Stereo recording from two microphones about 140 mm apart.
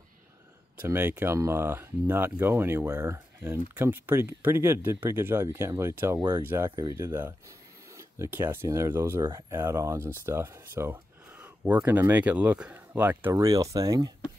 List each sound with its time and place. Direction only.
0.8 s speech: 15° right (ahead or behind)